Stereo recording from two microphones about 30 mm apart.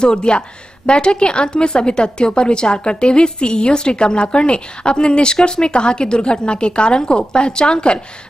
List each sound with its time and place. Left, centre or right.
0.0 s a woman's voice: left